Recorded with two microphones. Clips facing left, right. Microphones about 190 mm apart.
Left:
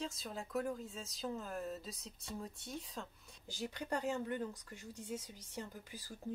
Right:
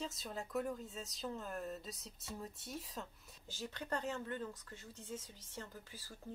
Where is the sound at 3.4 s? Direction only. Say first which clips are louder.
Left 2 dB; 15° left (ahead or behind).